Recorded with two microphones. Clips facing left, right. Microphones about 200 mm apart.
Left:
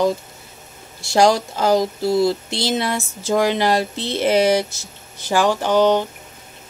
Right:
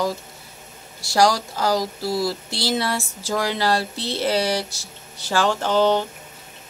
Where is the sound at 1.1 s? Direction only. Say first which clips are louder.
Left 3 dB; 25° left (ahead or behind).